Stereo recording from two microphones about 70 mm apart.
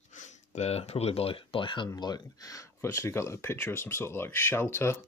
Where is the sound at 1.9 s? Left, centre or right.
Left.